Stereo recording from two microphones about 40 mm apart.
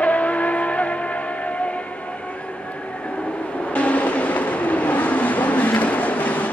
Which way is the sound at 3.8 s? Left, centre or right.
Left.